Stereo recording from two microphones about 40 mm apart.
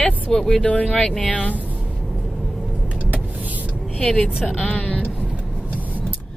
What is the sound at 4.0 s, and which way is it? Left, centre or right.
A woman's voice, left.